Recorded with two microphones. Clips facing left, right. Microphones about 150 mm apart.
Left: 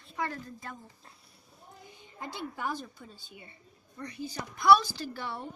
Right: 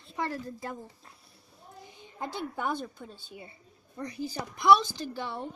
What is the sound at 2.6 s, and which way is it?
A woman's voice, 25° right (ahead or behind).